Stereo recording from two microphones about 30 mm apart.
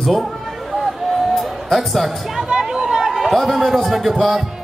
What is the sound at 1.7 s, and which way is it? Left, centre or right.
Speech, centre.